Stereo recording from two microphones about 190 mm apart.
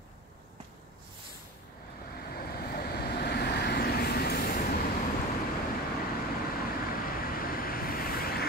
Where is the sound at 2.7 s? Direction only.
55° left (ahead or behind).